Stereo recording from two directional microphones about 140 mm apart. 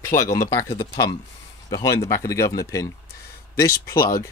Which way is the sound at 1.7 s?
25° left (ahead or behind).